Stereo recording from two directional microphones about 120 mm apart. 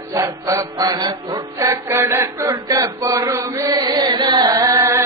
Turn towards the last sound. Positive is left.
turn(degrees=-25)  # may be behind; listen again after turning